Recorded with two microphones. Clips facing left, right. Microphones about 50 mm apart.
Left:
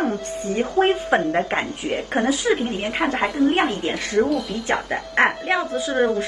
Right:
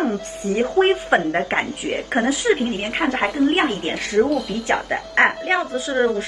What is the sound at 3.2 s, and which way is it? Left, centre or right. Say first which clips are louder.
A woman's voice: even; centre.